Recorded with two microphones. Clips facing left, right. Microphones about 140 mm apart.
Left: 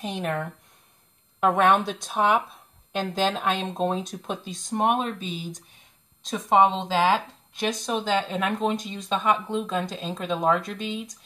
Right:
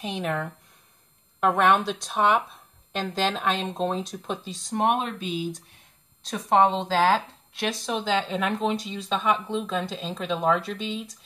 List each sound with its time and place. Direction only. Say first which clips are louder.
0.0 s speech: even; centre (ahead or behind)
4.9 s speech: even; 40° left (ahead or behind)
6.2 s speech: left 1 dB; centre (ahead or behind)
6.6 s speech: right 1 dB; 10° left (ahead or behind)